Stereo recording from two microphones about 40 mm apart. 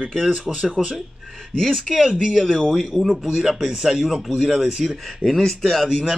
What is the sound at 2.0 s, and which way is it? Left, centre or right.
Speech, right.